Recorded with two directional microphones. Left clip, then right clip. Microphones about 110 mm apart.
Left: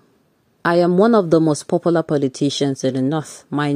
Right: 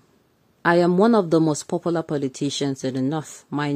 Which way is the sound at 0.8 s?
30° left (ahead or behind).